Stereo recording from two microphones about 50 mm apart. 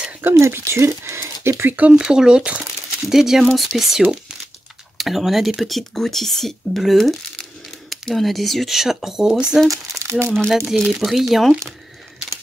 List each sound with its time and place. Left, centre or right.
0.2 s speech: right
1.7 s speech: right
2.0 s speech: centre
3.1 s speech: centre
9.7 s speech: right
10.7 s speech: centre